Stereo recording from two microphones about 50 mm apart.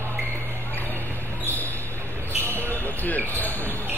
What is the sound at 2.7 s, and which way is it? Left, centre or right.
Basketball bounce, left.